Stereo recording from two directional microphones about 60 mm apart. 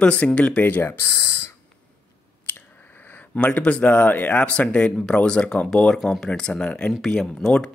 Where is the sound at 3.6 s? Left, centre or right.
Left.